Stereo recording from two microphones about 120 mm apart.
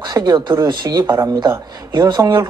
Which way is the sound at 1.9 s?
40° right (ahead or behind).